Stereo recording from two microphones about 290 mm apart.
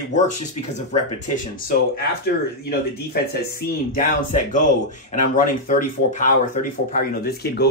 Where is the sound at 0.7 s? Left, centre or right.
Left.